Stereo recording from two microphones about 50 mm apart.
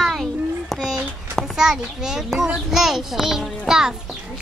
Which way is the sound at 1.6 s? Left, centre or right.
Centre.